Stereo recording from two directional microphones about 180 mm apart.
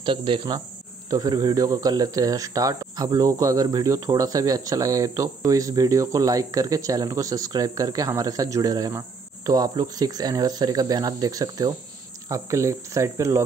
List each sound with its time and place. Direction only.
0.0 s speech: 25° right (ahead or behind)